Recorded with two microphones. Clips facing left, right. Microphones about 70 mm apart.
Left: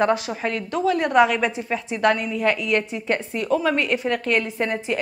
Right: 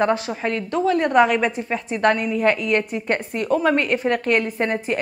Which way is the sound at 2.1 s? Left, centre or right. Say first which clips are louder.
Right 3 dB; centre.